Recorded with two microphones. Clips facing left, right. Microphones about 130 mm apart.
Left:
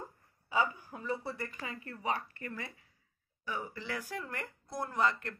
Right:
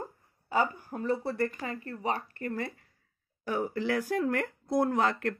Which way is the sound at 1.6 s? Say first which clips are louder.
Right 6 dB; 40° right (ahead or behind).